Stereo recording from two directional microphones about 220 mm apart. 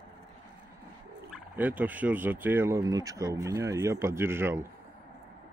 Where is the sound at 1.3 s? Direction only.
5° right (ahead or behind).